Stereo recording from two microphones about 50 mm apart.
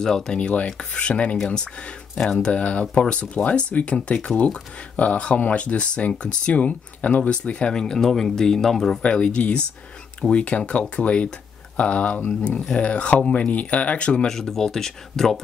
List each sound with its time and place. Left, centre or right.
0.0 s speech: centre
0.4 s speech: left
9.0 s speech: left
14.3 s speech: centre